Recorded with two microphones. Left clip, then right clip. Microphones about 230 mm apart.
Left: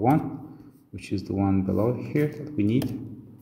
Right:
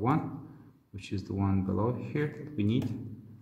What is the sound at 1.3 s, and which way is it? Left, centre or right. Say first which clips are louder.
Speech: left 7 dB; centre.